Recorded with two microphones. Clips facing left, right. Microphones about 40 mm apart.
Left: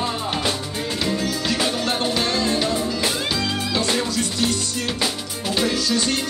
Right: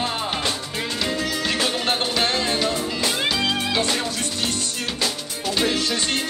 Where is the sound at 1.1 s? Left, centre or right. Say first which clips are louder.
Left 1 dB; right.